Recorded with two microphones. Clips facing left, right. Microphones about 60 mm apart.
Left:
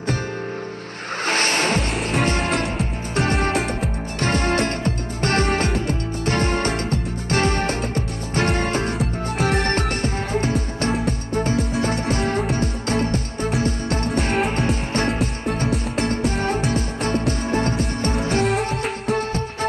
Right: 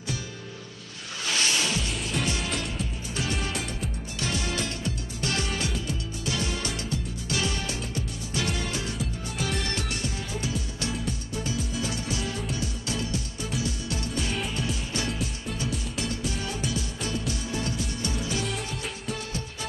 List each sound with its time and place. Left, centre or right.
1.2 s music: left
2.0 s music: left
2.2 s music: left